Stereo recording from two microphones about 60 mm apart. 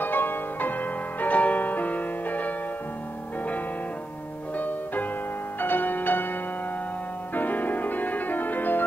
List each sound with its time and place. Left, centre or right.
0.0 s music: left
4.6 s music: left
7.3 s music: left